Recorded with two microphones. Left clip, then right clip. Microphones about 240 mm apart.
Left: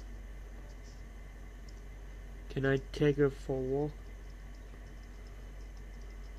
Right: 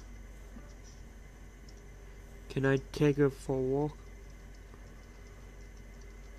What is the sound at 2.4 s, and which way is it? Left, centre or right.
Speech, centre.